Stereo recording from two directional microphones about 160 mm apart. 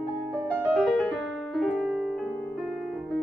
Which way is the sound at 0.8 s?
Centre (ahead or behind).